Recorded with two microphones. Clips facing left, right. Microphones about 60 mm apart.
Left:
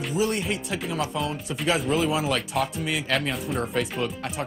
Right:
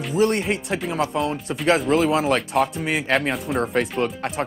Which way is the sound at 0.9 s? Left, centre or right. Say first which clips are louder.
Right 5 dB; right.